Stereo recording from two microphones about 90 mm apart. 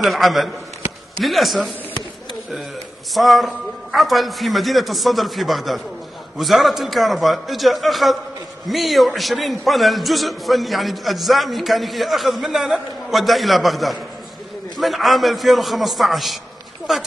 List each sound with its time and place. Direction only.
0.0 s a man's voice: centre (ahead or behind)
3.2 s a man's voice: centre (ahead or behind)